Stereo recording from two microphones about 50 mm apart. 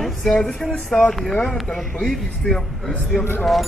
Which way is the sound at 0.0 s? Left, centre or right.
Centre.